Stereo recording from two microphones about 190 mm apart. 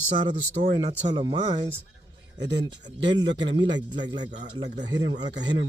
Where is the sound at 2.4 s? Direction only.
70° right (ahead or behind).